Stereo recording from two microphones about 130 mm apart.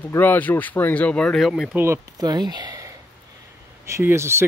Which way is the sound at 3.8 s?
20° right (ahead or behind).